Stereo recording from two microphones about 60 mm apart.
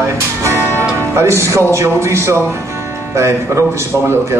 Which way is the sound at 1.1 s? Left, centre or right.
Right.